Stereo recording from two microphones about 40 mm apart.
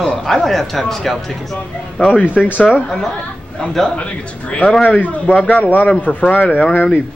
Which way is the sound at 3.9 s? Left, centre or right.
Left.